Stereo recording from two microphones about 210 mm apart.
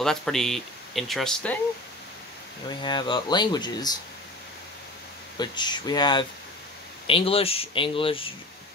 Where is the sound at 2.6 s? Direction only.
20° left (ahead or behind).